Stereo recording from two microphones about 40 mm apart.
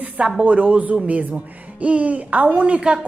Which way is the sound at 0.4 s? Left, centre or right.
Right.